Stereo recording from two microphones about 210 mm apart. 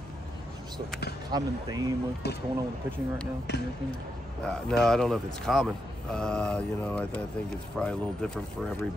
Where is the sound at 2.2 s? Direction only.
50° left (ahead or behind).